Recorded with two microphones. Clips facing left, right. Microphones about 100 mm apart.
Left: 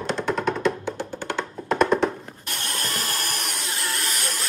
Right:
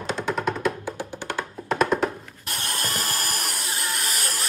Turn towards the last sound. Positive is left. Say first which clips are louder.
# even
turn(degrees=0)  # may be behind; listen again after turning